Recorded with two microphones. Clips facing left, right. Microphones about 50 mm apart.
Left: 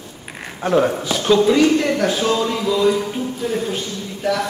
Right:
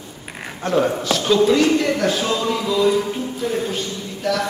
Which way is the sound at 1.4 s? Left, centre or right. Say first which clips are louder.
Even; centre.